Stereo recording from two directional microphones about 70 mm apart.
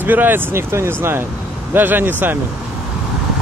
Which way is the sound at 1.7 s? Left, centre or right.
Right.